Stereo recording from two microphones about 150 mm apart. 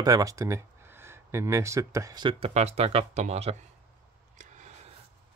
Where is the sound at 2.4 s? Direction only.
45° right (ahead or behind).